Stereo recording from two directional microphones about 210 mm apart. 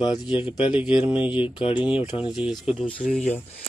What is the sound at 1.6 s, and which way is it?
Speech, 25° left (ahead or behind).